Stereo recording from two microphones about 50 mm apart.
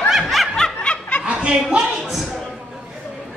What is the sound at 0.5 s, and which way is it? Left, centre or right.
Snicker, centre.